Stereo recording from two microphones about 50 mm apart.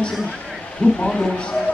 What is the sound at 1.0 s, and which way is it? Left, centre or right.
Speech, centre.